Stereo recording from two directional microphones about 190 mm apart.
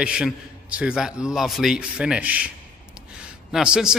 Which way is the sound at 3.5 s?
5° right (ahead or behind).